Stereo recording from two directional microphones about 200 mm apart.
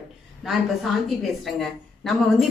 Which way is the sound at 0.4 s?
Centre (ahead or behind).